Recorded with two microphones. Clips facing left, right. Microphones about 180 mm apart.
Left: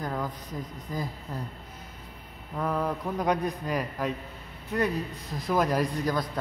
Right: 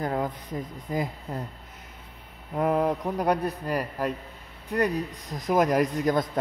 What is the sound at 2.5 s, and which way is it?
A man's voice, 20° right (ahead or behind).